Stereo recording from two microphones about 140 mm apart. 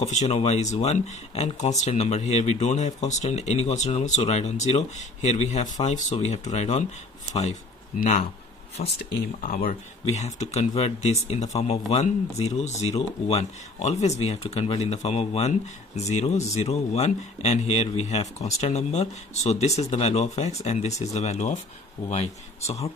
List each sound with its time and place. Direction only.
0.0 s speech: 50° left (ahead or behind)
8.9 s speech: 90° left
10.0 s speech: 55° left (ahead or behind)